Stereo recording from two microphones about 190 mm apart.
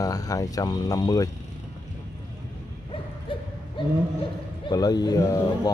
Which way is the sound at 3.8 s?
25° left (ahead or behind).